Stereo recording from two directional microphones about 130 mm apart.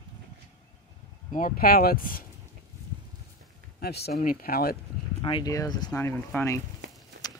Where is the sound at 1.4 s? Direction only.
90° left.